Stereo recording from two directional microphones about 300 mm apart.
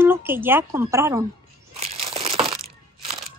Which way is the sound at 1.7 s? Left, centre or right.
Centre.